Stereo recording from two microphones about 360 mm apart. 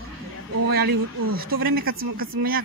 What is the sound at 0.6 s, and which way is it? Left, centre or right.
Speech, right.